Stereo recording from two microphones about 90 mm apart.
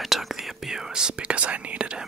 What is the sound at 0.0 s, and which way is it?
Whispering, centre (ahead or behind).